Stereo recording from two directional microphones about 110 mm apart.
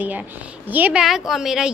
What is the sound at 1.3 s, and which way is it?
Speech, 5° right (ahead or behind).